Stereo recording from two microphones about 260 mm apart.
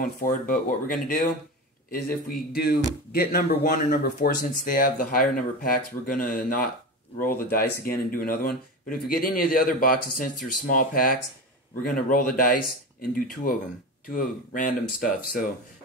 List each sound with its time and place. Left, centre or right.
0.0 s speech: left